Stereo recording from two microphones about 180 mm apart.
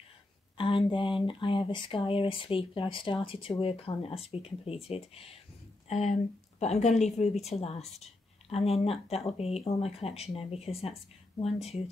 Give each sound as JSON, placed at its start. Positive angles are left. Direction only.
{"t": 0.6, "sound": "speech", "side_deg": 30}